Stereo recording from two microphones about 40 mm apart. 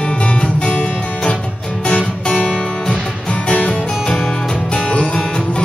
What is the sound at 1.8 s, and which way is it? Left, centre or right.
Music, left.